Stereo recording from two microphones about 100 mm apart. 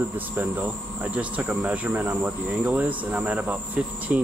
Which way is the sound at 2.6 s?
15° right (ahead or behind).